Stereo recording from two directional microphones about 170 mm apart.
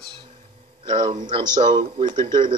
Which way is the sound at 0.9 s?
40° right (ahead or behind).